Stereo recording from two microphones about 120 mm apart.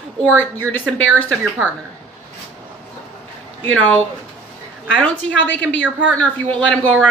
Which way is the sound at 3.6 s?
15° left (ahead or behind).